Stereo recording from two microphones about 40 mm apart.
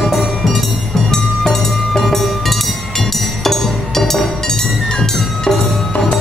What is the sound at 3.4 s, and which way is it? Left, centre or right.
Music, centre.